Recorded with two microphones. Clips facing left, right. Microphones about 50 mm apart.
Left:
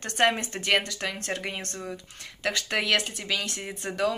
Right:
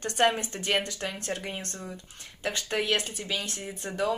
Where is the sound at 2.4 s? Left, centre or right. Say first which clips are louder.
Left 2 dB; left.